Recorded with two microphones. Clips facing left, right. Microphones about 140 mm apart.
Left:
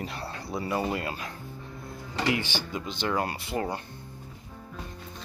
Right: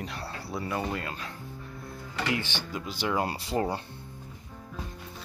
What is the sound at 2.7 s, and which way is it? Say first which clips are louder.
Speech: right 2 dB; centre (ahead or behind).